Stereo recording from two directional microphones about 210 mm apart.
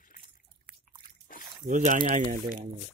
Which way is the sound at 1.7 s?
35° right (ahead or behind).